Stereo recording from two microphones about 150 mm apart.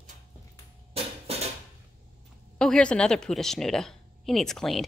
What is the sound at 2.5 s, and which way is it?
Speech, 5° left (ahead or behind).